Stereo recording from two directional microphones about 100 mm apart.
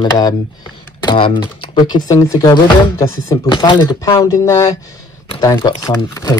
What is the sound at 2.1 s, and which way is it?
Speech, 30° left (ahead or behind).